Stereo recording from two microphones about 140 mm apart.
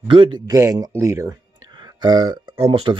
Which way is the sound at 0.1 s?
35° right (ahead or behind).